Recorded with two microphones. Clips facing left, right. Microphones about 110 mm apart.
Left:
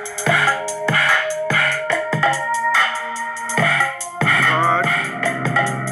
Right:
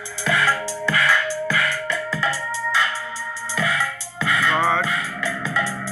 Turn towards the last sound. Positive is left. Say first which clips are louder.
# left 5 dB
turn(degrees=55)  # may be behind; listen again after turning